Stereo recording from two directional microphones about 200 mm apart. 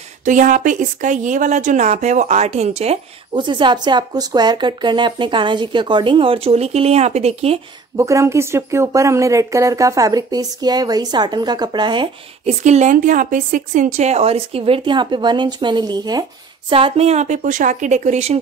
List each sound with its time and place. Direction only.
0.2 s a woman's voice: 40° right (ahead or behind)
7.9 s speech: 15° right (ahead or behind)
12.6 s a woman's voice: 35° right (ahead or behind)